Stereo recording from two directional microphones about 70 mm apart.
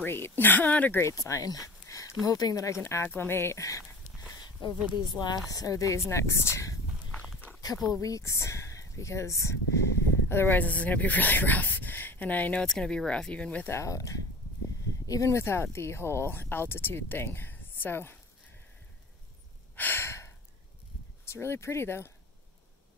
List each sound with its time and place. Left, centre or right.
0.0 s speech: left
1.0 s speech: left
1.5 s a sound: left
2.2 s speech: left
2.8 s speech: left
5.0 s speech: left
5.5 s a woman's voice: left
5.9 s speech: left
7.9 s speech: left
10.6 s speech: left
12.6 s speech: centre
13.7 s speech: left
19.7 s a sound: left
21.3 s speech: left